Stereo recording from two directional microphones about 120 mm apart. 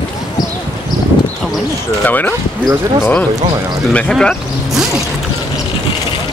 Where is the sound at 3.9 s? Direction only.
10° left (ahead or behind).